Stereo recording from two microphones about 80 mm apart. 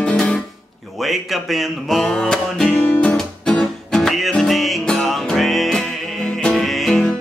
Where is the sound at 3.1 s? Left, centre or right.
Centre.